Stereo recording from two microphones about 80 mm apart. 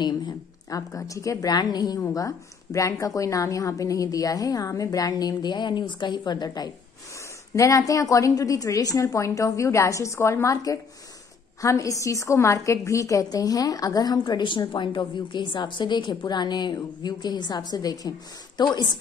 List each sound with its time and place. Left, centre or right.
0.0 s a woman's voice: left
2.0 s a woman's voice: left
7.5 s a woman's voice: left
14.1 s a woman's voice: left
18.6 s a woman's voice: left